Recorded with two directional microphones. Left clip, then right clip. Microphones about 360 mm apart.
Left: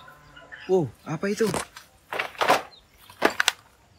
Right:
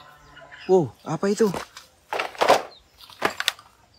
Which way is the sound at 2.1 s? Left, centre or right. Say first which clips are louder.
Right 3 dB; centre.